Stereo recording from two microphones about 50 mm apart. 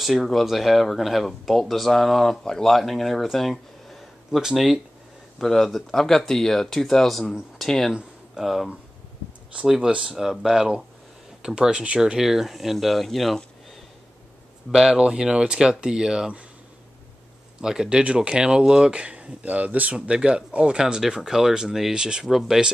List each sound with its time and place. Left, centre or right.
0.0 s speech: centre
5.4 s speech: centre
9.7 s speech: centre
12.2 s speech: centre
14.7 s speech: centre
17.6 s speech: centre
22.2 s speech: centre